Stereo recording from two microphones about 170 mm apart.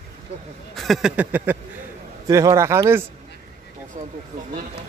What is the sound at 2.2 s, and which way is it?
Speech, 20° right (ahead or behind).